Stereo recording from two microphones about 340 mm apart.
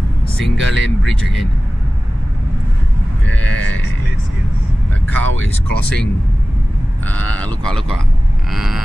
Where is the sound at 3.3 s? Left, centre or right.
Right.